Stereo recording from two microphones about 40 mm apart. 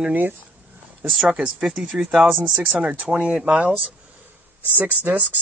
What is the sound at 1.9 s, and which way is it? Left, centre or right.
Speech, right.